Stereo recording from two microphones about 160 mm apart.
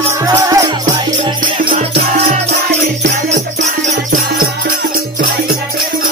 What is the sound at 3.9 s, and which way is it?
Music, 75° right (ahead or behind).